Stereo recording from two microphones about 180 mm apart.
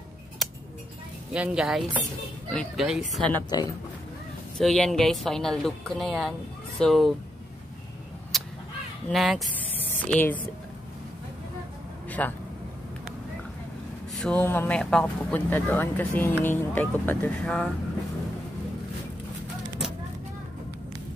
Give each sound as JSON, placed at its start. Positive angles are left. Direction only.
{"t": 1.3, "sound": "speech", "side_deg": -5}
{"t": 3.4, "sound": "speech", "side_deg": 20}
{"t": 4.6, "sound": "speech", "side_deg": 5}
{"t": 8.3, "sound": "a sound", "side_deg": 0}
{"t": 9.1, "sound": "speech", "side_deg": 0}
{"t": 12.1, "sound": "speech", "side_deg": 10}
{"t": 14.1, "sound": "speech", "side_deg": 5}